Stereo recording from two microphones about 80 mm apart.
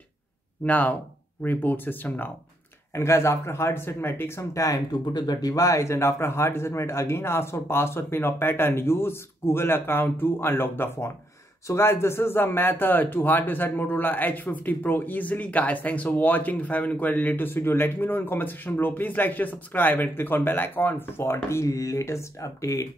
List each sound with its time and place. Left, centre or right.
0.7 s speech: centre
2.9 s a man's voice: left
5.1 s a man's voice: left